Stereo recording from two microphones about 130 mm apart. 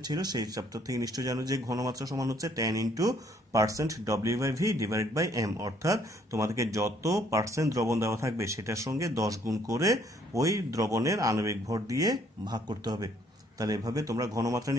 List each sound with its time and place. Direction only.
0.0 s speech: 30° right (ahead or behind)